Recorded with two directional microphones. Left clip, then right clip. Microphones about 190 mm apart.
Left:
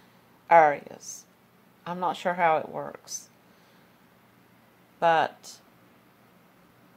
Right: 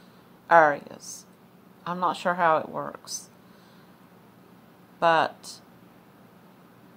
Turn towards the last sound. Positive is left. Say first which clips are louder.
# right 1 dB
turn(degrees=15)  # may be behind; listen again after turning